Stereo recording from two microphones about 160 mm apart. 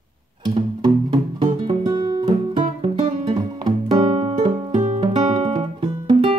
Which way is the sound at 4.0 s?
40° right (ahead or behind).